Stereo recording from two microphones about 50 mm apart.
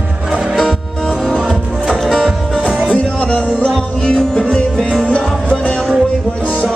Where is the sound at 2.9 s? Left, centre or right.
Left.